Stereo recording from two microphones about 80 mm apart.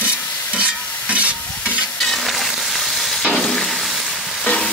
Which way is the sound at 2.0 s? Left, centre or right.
Centre.